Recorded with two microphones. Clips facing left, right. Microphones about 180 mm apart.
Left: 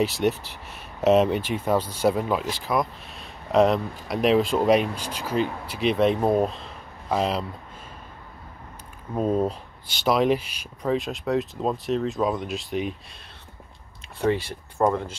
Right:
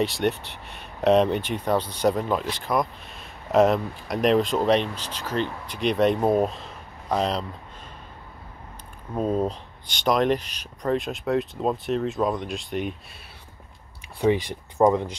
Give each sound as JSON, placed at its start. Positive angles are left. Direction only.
{"t": 0.0, "sound": "speech", "side_deg": 0}
{"t": 9.1, "sound": "speech", "side_deg": 5}
{"t": 14.2, "sound": "speech", "side_deg": -15}